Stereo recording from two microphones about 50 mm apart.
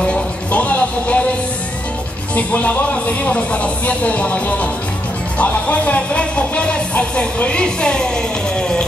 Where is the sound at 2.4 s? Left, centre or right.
Left.